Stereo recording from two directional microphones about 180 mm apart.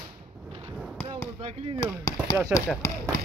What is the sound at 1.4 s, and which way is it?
Speech, 35° right (ahead or behind).